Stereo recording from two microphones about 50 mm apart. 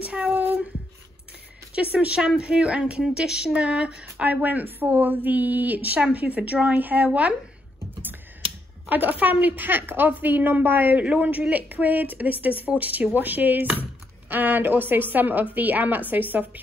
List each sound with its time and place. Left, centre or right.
0.1 s child singing: right
1.8 s speech: right
3.0 s speech: centre; by 7.3 s right
8.8 s speech: right